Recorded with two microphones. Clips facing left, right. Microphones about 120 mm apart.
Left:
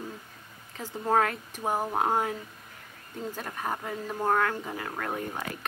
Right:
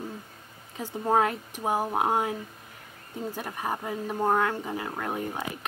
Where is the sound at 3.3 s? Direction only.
10° right (ahead or behind).